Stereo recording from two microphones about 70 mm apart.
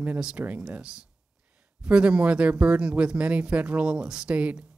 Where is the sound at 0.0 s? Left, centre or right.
Centre.